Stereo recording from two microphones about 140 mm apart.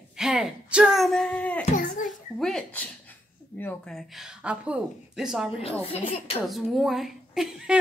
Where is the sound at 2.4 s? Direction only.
10° left (ahead or behind).